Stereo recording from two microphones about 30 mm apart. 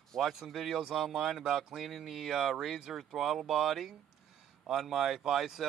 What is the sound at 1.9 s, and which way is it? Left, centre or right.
Speech, centre.